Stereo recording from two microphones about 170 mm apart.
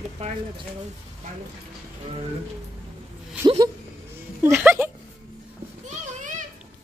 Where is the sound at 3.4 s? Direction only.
20° right (ahead or behind).